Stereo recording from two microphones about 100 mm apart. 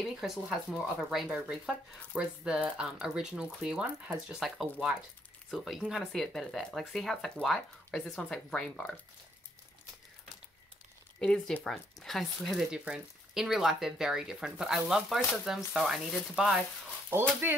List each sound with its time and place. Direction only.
0.1 s speech: centre (ahead or behind)
11.1 s speech: 5° left (ahead or behind)
17.1 s speech: 20° right (ahead or behind)